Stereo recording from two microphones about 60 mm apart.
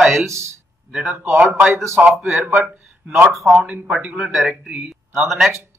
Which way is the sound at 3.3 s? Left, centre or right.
Centre.